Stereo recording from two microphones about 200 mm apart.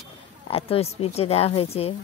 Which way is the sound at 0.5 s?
30° left (ahead or behind).